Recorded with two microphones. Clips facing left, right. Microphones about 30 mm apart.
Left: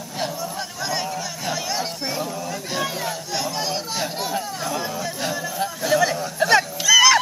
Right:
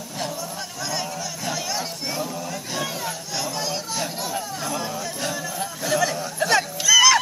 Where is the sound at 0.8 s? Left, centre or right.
Centre.